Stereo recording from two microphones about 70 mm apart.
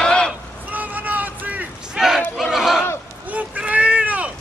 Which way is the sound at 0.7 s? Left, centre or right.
Right.